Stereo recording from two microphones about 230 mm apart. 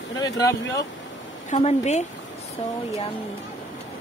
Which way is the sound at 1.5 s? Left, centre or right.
Left.